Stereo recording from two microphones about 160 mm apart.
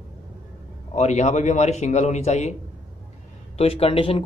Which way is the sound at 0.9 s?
45° left (ahead or behind).